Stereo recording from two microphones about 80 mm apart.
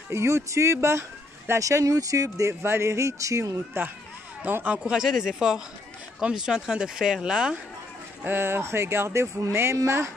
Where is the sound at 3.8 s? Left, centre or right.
Right.